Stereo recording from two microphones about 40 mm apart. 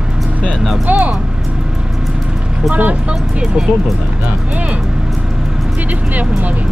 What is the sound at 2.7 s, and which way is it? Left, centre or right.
Music, right.